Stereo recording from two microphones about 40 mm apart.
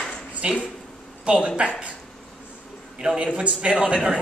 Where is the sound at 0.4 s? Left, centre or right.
Right.